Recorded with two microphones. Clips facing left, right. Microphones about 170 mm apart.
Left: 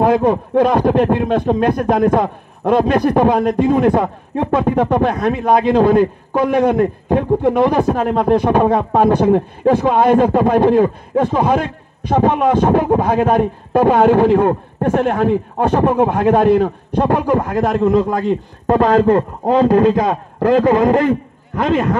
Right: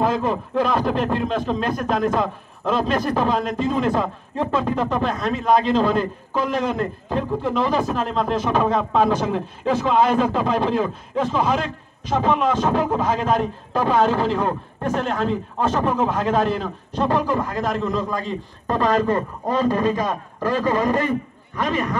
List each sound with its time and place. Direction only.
0.0 s speech: 60° left (ahead or behind)